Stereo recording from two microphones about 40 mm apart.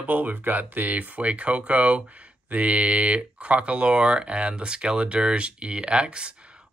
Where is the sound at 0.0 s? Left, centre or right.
Right.